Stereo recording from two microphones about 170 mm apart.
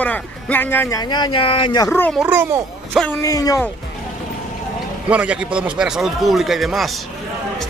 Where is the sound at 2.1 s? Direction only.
10° right (ahead or behind).